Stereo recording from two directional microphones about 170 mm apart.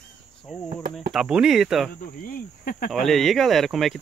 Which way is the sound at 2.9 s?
Centre (ahead or behind).